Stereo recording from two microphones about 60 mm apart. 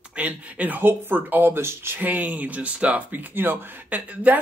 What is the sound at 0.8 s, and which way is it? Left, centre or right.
Speech, right.